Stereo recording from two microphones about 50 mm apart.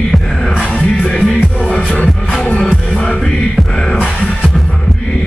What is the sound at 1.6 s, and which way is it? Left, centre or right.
Music, centre.